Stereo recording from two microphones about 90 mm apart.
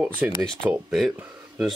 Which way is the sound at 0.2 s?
15° right (ahead or behind).